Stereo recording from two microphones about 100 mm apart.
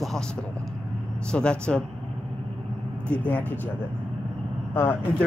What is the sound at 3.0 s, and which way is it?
Speech, 15° left (ahead or behind).